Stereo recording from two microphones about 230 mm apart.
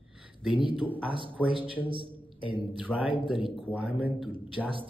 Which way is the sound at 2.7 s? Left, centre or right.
Centre.